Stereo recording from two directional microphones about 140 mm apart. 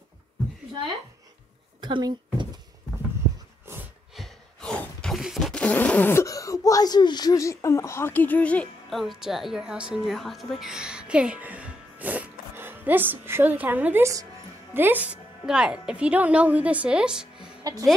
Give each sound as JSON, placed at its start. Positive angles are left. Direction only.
{"t": 1.8, "sound": "a woman's voice", "side_deg": -35}
{"t": 4.2, "sound": "a sound", "side_deg": 5}
{"t": 9.0, "sound": "a woman's voice", "side_deg": 0}